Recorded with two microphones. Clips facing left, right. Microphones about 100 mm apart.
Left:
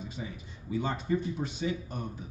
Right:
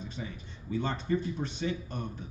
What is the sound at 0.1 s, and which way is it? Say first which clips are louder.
Speech: even; 10° left (ahead or behind).